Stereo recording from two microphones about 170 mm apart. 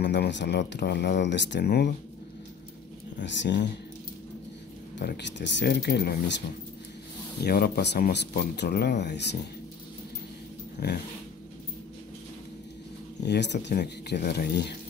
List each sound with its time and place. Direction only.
0.0 s speech: 85° left
3.3 s speech: 90° left
4.9 s speech: 85° left
7.4 s speech: 65° left (ahead or behind)
9.0 s speech: 85° left
10.8 s dog: 75° left (ahead or behind)
13.2 s speech: 90° left